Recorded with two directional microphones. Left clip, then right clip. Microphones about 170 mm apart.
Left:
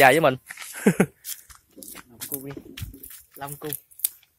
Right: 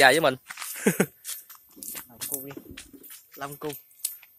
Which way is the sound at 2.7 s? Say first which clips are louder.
Left 2 dB; 60° left (ahead or behind).